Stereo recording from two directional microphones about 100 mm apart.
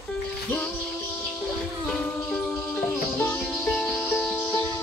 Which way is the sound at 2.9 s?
20° left (ahead or behind).